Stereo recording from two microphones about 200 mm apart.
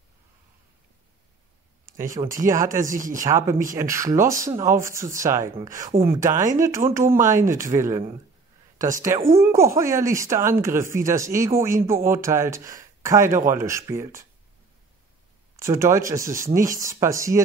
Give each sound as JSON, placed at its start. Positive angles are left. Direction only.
{"t": 2.1, "sound": "speech", "side_deg": -15}
{"t": 2.9, "sound": "speech", "side_deg": -40}
{"t": 3.2, "sound": "speech", "side_deg": -15}
{"t": 6.6, "sound": "speech", "side_deg": -15}
{"t": 15.5, "sound": "speech", "side_deg": -15}